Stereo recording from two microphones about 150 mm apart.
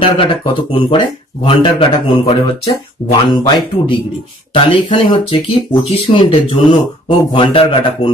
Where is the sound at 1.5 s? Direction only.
35° left (ahead or behind).